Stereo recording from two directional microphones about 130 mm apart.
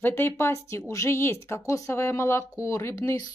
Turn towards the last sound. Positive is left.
turn(degrees=25)  # may be behind; listen again after turning